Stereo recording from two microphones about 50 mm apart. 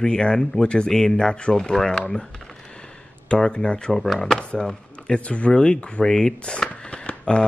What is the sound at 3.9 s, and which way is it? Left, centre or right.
Speech, centre.